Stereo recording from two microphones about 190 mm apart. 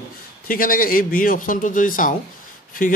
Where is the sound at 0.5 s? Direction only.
50° left (ahead or behind).